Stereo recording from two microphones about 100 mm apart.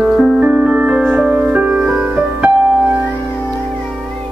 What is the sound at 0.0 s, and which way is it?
Music, centre (ahead or behind).